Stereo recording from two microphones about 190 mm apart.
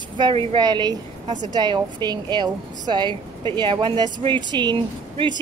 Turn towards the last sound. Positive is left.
turn(degrees=-25)  # may be behind; listen again after turning